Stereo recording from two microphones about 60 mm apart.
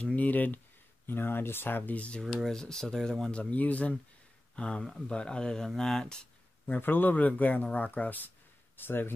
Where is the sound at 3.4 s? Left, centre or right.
Left.